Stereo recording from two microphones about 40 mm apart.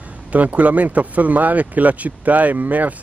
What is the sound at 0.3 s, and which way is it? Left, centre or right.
Speech, right.